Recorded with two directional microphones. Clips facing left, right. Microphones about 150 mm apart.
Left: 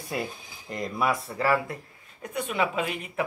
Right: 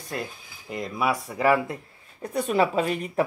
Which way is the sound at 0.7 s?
5° right (ahead or behind).